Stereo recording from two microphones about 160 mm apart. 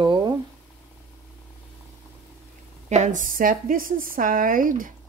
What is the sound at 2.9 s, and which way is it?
A woman's voice, 50° right (ahead or behind).